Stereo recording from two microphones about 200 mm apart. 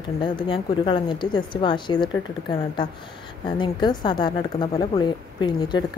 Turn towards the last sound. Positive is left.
turn(degrees=20)  # may be behind; listen again after turning